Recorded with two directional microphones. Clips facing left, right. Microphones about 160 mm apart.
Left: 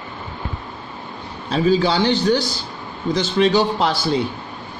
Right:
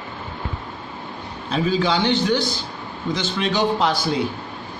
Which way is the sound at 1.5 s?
35° left (ahead or behind).